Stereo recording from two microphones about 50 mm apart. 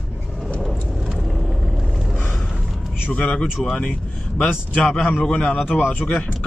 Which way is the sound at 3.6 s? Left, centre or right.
Centre.